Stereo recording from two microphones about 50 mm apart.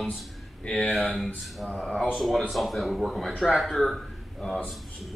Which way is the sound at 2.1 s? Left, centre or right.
Centre.